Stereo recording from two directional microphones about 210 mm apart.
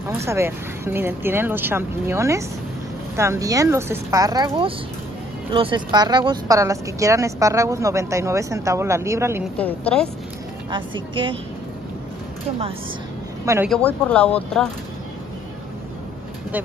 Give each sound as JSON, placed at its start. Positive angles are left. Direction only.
{"t": 0.1, "sound": "a woman's voice", "side_deg": -10}
{"t": 9.6, "sound": "a woman's voice", "side_deg": 5}
{"t": 10.7, "sound": "a woman's voice", "side_deg": -25}
{"t": 13.7, "sound": "speech", "side_deg": 5}